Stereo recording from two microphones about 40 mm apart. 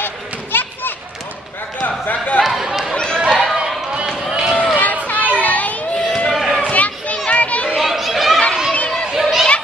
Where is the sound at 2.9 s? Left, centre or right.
Left.